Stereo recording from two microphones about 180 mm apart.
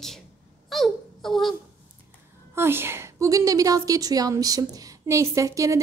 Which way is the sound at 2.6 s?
15° right (ahead or behind).